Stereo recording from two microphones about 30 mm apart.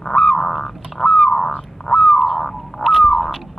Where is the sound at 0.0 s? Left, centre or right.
Left.